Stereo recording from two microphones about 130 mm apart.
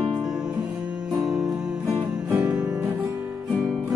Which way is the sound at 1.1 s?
Centre (ahead or behind).